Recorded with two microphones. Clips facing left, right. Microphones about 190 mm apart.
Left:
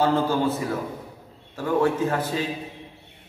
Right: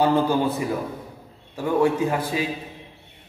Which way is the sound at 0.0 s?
15° right (ahead or behind).